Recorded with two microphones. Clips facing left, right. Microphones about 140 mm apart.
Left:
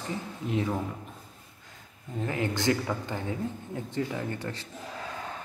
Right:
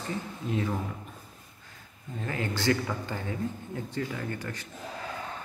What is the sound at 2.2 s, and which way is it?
A man's voice, 20° left (ahead or behind).